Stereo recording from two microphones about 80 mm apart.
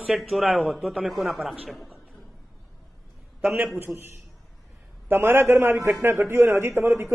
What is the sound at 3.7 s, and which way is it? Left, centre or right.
A man's voice, right.